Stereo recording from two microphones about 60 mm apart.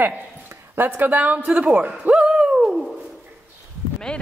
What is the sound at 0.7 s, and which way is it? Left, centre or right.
Speech, right.